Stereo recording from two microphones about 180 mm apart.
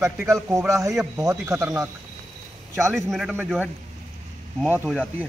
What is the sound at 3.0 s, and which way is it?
Speech, centre (ahead or behind).